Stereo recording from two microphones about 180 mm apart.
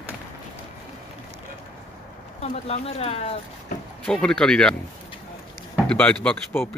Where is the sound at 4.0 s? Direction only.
5° left (ahead or behind).